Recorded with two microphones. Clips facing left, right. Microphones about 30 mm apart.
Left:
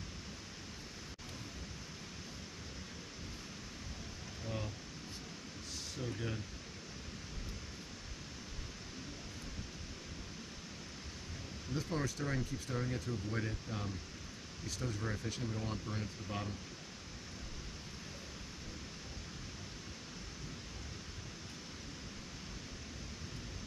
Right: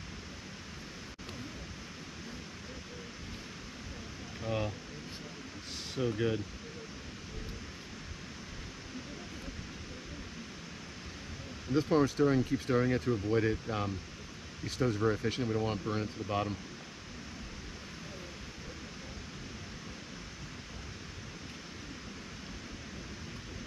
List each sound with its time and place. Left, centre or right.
4.4 s a sound: right
5.9 s speech: right
11.7 s speech: right
12.4 s speech: right